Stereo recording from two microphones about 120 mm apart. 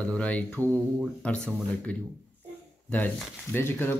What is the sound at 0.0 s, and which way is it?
Speech, 10° left (ahead or behind).